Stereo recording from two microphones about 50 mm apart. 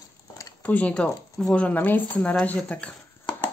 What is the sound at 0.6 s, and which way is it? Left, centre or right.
Speech, left.